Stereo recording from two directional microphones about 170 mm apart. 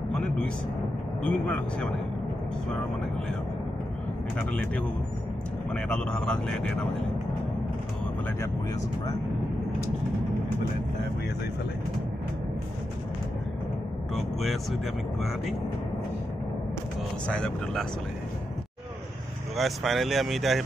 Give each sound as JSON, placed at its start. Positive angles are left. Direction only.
{"t": 0.1, "sound": "a sound", "side_deg": 5}
{"t": 1.2, "sound": "speech", "side_deg": 10}
{"t": 5.7, "sound": "speech", "side_deg": 5}
{"t": 14.1, "sound": "speech", "side_deg": 0}
{"t": 17.3, "sound": "speech", "side_deg": 5}
{"t": 19.5, "sound": "speech", "side_deg": 0}